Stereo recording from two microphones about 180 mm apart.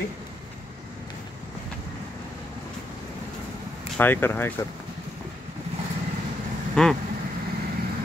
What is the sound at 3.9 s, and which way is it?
Speech, 10° left (ahead or behind).